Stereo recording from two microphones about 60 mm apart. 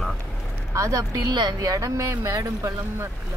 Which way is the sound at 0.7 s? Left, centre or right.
Right.